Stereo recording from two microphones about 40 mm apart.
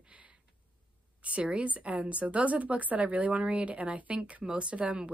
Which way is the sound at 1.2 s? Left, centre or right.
Right.